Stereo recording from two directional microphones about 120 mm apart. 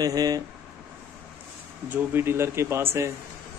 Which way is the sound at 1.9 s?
15° right (ahead or behind).